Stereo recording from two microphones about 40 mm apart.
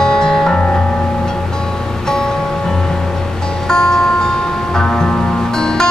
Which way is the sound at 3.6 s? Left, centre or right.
Centre.